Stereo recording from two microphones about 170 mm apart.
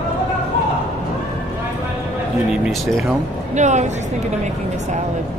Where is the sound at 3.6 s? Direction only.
45° right (ahead or behind).